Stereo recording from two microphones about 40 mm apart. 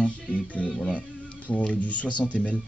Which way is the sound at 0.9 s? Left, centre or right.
Left.